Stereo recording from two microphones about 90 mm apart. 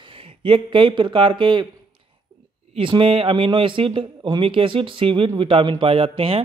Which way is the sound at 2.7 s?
85° right.